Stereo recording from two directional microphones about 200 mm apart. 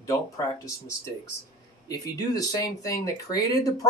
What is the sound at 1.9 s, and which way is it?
Speech, 20° left (ahead or behind).